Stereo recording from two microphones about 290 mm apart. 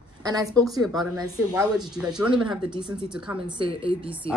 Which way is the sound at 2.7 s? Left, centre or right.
Centre.